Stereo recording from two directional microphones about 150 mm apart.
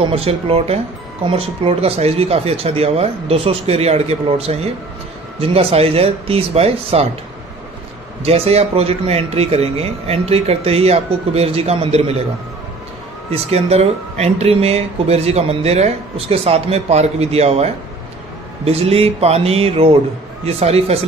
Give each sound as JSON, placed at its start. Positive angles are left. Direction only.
{"t": 0.0, "sound": "speech", "side_deg": -40}
{"t": 8.2, "sound": "speech", "side_deg": -45}
{"t": 13.3, "sound": "speech", "side_deg": -45}